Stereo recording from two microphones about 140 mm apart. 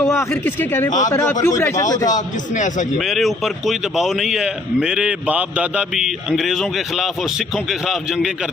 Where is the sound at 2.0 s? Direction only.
65° left (ahead or behind).